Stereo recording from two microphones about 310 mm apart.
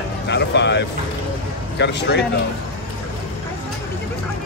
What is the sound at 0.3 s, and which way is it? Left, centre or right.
Speech, left.